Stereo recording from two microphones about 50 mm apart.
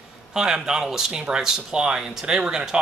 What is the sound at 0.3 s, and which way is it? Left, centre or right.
Speech, centre.